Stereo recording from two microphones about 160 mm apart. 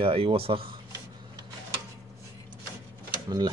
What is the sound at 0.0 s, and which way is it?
Speech, 35° right (ahead or behind).